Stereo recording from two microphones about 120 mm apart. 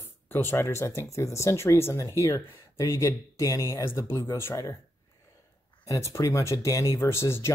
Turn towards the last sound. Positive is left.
turn(degrees=20)  # may be behind; listen again after turning